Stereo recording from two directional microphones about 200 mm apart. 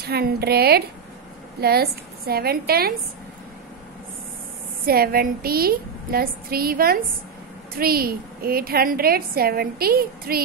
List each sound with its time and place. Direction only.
0.0 s a woman's voice: 50° right (ahead or behind)
4.8 s a woman's voice: 50° right (ahead or behind)